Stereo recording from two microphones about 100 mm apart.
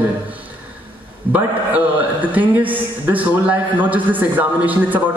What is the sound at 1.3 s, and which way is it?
A man's voice, 15° right (ahead or behind).